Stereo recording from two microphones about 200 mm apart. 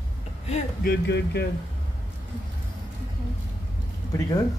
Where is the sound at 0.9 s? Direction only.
55° left (ahead or behind).